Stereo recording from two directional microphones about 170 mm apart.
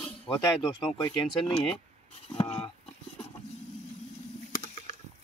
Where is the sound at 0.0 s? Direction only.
30° left (ahead or behind).